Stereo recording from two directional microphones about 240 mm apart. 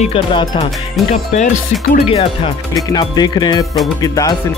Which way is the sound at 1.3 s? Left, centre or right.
Left.